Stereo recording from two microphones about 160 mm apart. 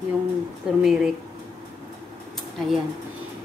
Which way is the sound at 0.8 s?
5° right (ahead or behind).